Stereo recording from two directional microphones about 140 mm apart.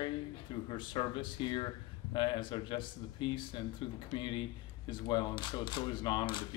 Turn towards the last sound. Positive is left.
turn(degrees=35)  # may be behind; listen again after turning